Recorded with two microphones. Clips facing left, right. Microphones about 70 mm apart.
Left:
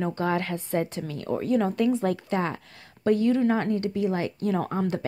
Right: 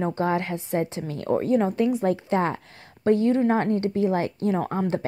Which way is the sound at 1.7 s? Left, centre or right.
Centre.